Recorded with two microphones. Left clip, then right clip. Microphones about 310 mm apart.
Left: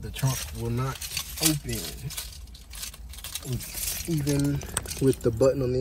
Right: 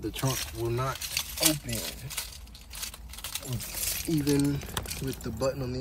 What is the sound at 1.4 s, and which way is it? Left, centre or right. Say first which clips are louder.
Speech: left 1 dB; right.